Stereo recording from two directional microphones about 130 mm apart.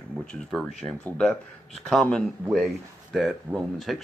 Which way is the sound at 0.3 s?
Centre (ahead or behind).